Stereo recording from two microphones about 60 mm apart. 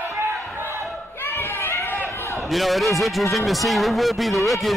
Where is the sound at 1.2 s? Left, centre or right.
Left.